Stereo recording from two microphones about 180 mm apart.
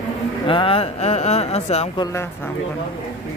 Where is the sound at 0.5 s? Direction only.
30° left (ahead or behind).